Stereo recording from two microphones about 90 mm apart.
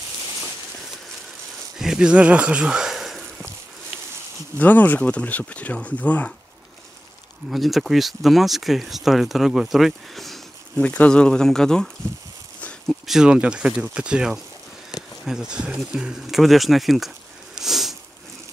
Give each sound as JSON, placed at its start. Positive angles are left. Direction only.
{"t": 1.8, "sound": "a sound", "side_deg": -5}
{"t": 4.6, "sound": "speech", "side_deg": 20}
{"t": 7.5, "sound": "speech", "side_deg": 0}
{"t": 10.8, "sound": "speech", "side_deg": 15}
{"t": 17.6, "sound": "sniff", "side_deg": -5}